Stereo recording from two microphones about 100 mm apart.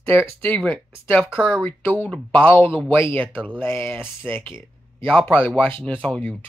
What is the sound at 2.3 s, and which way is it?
Speech, 20° left (ahead or behind).